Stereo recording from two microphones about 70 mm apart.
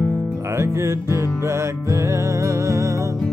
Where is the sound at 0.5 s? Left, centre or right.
Right.